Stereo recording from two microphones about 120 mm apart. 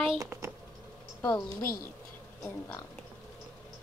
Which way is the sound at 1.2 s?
10° left (ahead or behind).